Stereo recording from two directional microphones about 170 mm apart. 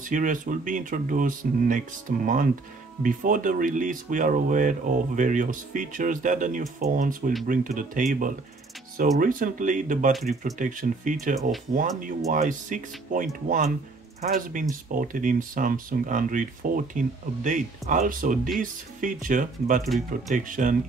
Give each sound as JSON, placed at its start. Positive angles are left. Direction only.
{"t": 0.0, "sound": "speech", "side_deg": -50}
{"t": 14.3, "sound": "speech", "side_deg": -50}